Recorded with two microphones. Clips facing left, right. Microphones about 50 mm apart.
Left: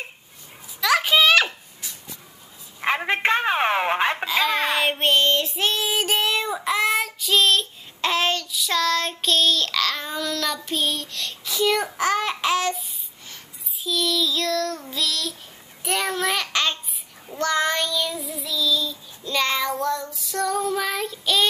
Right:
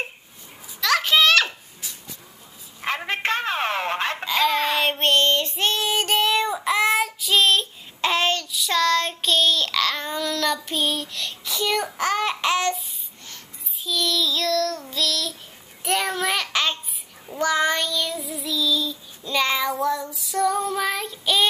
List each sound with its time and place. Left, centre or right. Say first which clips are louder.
0.7 s a sound: left 1 dB; centre
2.8 s telephone: left 4 dB; centre
4.3 s child singing: right 1 dB; centre
13.8 s child singing: even; centre